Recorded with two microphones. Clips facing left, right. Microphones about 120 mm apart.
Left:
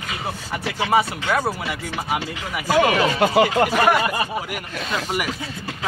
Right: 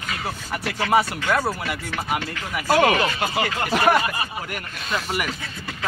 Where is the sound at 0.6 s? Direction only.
20° left (ahead or behind).